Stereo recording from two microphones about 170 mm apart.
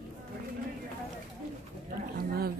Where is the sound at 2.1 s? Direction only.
65° right (ahead or behind).